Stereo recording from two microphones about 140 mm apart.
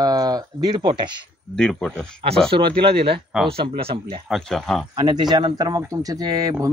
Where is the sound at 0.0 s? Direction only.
25° right (ahead or behind).